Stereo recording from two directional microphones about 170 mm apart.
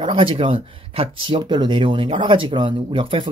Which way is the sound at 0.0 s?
30° right (ahead or behind).